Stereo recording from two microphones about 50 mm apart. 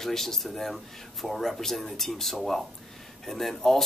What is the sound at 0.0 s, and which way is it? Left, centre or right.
Speech, centre.